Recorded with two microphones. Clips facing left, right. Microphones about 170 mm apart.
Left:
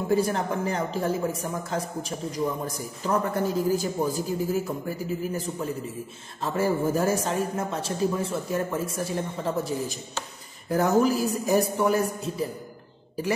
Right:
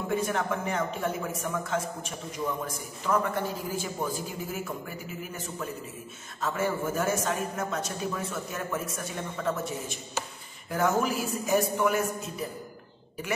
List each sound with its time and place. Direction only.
0.1 s a man's voice: 35° left (ahead or behind)